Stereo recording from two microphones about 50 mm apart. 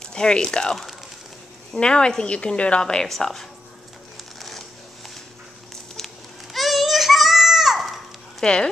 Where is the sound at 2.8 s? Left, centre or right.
Centre.